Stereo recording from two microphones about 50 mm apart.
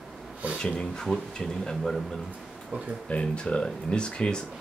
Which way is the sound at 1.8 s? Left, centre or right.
Centre.